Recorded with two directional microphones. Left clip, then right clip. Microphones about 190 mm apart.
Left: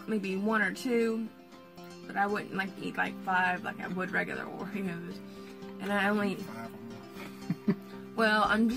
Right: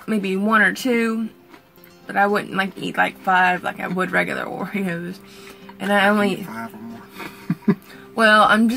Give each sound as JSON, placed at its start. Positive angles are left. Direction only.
{"t": 0.1, "sound": "speech", "side_deg": -15}
{"t": 2.1, "sound": "speech", "side_deg": -15}
{"t": 8.2, "sound": "speech", "side_deg": -15}